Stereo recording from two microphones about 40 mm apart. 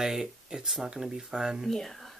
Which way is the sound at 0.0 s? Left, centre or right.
Centre.